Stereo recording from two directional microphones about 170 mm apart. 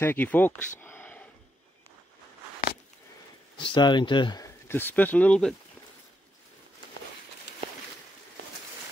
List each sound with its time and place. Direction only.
0.0 s speech: 10° left (ahead or behind)
3.5 s speech: 30° left (ahead or behind)
4.6 s speech: 10° left (ahead or behind)